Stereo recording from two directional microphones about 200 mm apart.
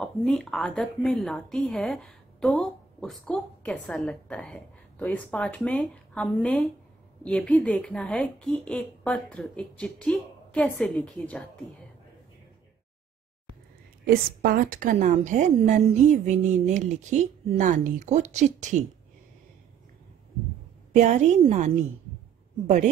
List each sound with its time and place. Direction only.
0.0 s speech: 5° left (ahead or behind)
14.0 s a woman's voice: 50° right (ahead or behind)
20.9 s a woman's voice: 35° right (ahead or behind)